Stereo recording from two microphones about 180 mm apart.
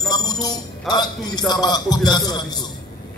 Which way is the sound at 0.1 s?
20° left (ahead or behind).